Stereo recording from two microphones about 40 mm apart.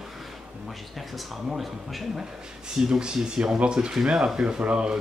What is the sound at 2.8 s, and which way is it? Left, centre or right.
A man's voice, centre.